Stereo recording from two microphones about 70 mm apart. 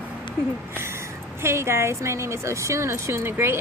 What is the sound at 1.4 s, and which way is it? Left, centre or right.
A woman's voice, right.